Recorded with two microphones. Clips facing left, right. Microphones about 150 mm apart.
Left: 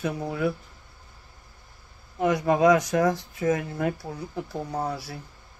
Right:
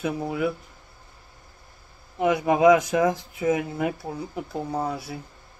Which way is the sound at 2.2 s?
20° right (ahead or behind).